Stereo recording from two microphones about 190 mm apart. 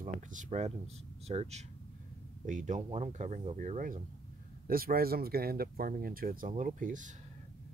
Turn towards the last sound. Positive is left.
turn(degrees=-45)  # may be behind; listen again after turning